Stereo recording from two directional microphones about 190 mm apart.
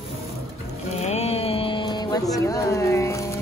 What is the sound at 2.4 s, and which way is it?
Speech, 15° left (ahead or behind).